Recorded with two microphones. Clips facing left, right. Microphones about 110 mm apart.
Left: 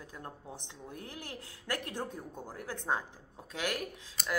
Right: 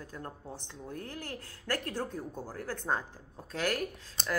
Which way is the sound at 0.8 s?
15° left (ahead or behind).